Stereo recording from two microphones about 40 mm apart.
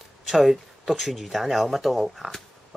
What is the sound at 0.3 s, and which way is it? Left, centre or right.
Speech, centre.